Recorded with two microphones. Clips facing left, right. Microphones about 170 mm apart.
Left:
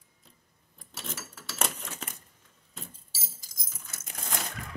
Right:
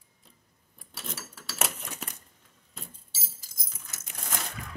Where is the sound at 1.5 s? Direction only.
5° right (ahead or behind).